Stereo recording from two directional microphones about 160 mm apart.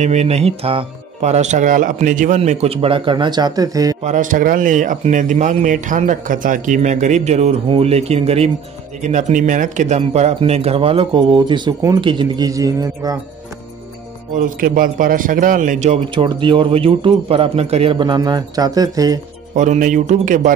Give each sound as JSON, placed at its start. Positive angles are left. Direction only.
{"t": 0.0, "sound": "speech", "side_deg": -45}
{"t": 4.0, "sound": "speech", "side_deg": -50}
{"t": 14.3, "sound": "a man's voice", "side_deg": -55}
{"t": 16.2, "sound": "speech", "side_deg": -30}
{"t": 19.5, "sound": "speech", "side_deg": -50}